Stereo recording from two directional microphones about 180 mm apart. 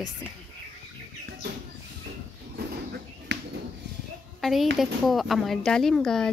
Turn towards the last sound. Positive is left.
turn(degrees=5)  # may be behind; listen again after turning